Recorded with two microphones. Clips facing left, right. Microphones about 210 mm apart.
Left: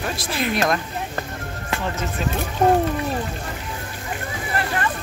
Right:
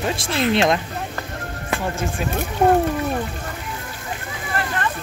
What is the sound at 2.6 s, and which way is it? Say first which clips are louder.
Speech: right 1 dB; 10° right (ahead or behind).